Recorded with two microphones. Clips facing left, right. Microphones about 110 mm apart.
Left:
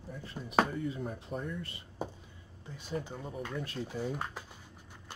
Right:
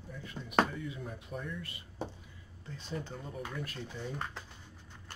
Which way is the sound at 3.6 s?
30° left (ahead or behind).